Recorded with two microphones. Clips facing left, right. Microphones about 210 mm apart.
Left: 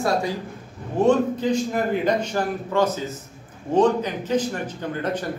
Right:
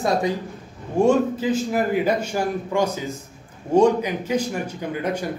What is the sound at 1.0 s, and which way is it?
A man's voice, 10° right (ahead or behind).